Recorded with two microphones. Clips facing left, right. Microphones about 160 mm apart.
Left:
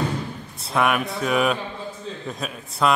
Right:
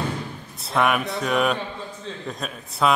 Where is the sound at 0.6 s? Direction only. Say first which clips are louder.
Even; centre (ahead or behind).